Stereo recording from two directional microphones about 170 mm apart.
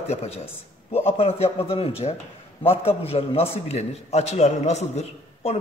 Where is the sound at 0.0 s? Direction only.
40° left (ahead or behind).